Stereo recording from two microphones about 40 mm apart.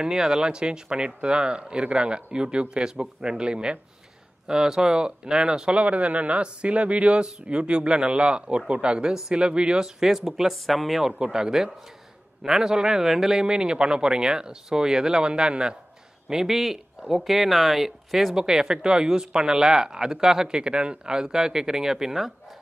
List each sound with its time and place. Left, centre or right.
0.0 s speech: centre
5.8 s a man's voice: right; by 11.1 s centre
11.2 s speech: centre
16.3 s speech: centre
18.3 s speech: centre